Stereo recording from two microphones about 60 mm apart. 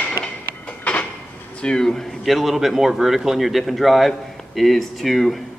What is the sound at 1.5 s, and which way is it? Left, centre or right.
A man's voice, centre.